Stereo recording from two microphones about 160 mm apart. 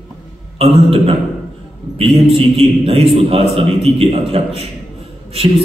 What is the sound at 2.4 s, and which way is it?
Speech, 40° right (ahead or behind).